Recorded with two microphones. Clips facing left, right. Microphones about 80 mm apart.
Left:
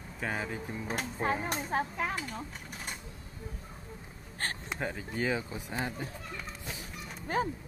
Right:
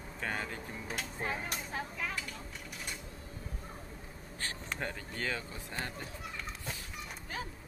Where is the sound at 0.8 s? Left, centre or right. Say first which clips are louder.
Left 6 dB; left.